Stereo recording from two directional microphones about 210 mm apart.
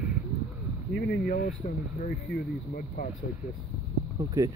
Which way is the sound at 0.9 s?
45° left (ahead or behind).